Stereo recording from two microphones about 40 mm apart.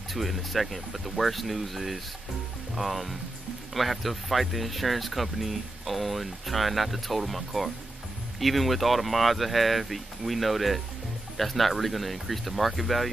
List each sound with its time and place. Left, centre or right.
0.1 s speech: centre